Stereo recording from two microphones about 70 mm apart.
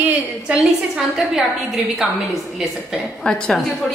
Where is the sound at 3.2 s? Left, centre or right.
Centre.